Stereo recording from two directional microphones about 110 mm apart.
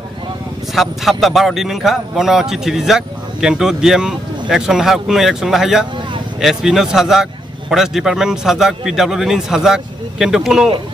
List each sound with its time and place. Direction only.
0.7 s a man's voice: centre (ahead or behind)